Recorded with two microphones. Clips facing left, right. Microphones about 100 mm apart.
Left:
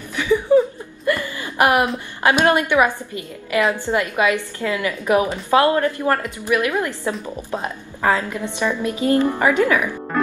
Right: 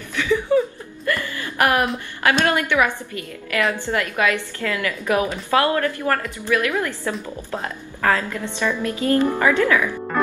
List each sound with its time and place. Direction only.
0.1 s chuckle: 15° left (ahead or behind)
2.3 s a woman's voice: 15° left (ahead or behind)